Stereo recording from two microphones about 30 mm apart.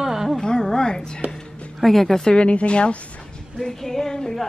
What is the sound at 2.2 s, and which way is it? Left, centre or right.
Speech, left.